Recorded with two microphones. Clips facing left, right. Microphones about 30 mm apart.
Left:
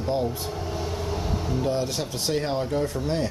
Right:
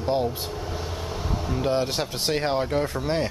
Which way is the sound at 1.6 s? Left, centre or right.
Right.